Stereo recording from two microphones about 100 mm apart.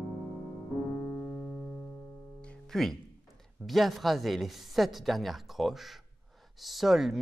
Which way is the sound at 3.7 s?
Centre (ahead or behind).